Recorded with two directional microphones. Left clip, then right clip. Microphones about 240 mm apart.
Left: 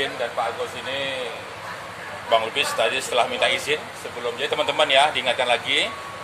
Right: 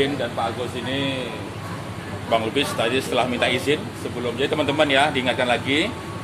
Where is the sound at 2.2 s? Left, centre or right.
Left.